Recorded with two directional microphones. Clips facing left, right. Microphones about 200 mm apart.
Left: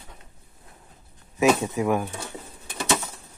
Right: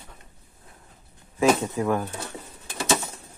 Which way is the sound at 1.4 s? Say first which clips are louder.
Left 1 dB; 15° left (ahead or behind).